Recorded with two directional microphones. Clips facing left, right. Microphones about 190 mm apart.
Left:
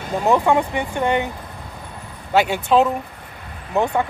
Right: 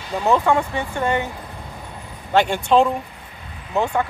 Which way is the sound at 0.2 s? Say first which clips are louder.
Left 1 dB; 15° left (ahead or behind).